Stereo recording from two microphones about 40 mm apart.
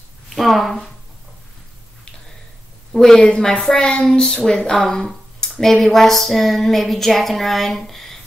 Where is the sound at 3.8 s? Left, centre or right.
Centre.